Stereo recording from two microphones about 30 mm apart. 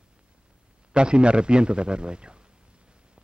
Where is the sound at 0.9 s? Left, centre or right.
Right.